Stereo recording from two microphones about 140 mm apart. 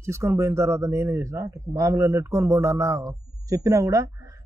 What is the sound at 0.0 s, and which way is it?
Speech, 20° right (ahead or behind).